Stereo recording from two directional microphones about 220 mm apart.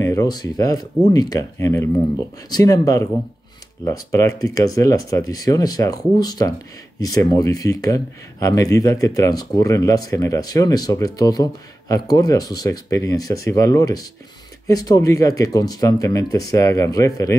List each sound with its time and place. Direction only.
0.0 s speech: 15° left (ahead or behind)